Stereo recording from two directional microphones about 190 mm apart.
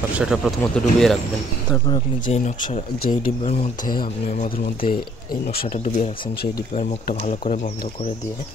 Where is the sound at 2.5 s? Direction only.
40° left (ahead or behind).